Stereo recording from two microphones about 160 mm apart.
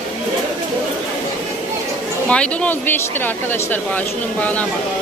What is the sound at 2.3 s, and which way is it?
Speech, 5° left (ahead or behind).